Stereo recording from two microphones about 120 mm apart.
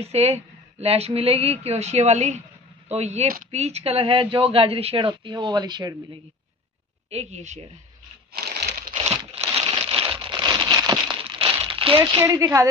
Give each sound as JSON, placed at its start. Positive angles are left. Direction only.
{"t": 0.0, "sound": "speech", "side_deg": -60}
{"t": 7.1, "sound": "speech", "side_deg": -65}
{"t": 8.9, "sound": "crumpling", "side_deg": -55}
{"t": 9.3, "sound": "a sound", "side_deg": -55}
{"t": 11.3, "sound": "crumpling", "side_deg": -50}
{"t": 12.2, "sound": "speech", "side_deg": -25}